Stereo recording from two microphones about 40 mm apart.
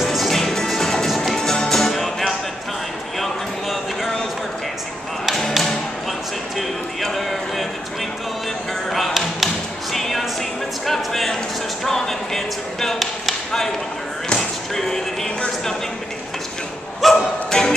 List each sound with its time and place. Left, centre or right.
0.0 s music: centre
7.0 s music: centre
8.9 s music: centre
10.9 s a sound: centre
14.3 s slam: centre
17.0 s music: centre
17.5 s music: centre